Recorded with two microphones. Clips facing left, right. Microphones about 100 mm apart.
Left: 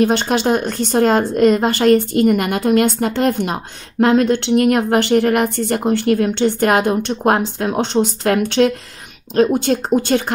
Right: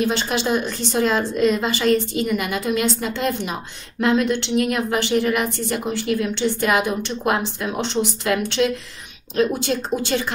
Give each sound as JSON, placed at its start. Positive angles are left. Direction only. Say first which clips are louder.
{"t": 0.0, "sound": "a woman's voice", "louder": "left 6 dB", "side_deg": 55}